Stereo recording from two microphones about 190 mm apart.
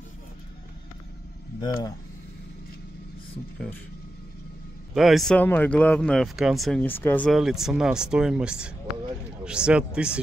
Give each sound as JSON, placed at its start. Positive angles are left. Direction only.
{"t": 1.6, "sound": "speech", "side_deg": 20}
{"t": 3.5, "sound": "speech", "side_deg": 5}
{"t": 4.9, "sound": "speech", "side_deg": 0}